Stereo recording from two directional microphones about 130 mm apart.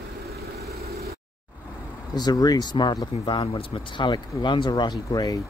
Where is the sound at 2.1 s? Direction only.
30° left (ahead or behind).